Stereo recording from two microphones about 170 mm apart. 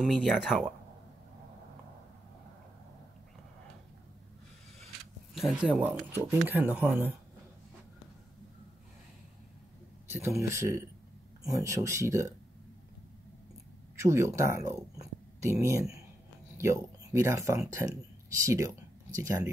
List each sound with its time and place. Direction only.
0.0 s speech: centre (ahead or behind)
5.3 s speech: centre (ahead or behind)
10.0 s a sound: 15° right (ahead or behind)
10.4 s speech: 15° right (ahead or behind)
13.9 s speech: 15° right (ahead or behind)
16.5 s speech: 15° right (ahead or behind)